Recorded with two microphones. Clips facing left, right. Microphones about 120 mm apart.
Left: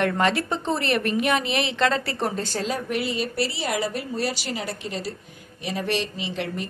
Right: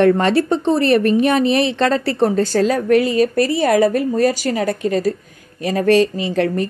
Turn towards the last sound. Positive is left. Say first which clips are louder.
# right 11 dB
turn(degrees=-45)  # may be behind; listen again after turning